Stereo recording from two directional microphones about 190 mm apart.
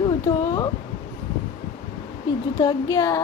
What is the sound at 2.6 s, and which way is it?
Speech, 20° left (ahead or behind).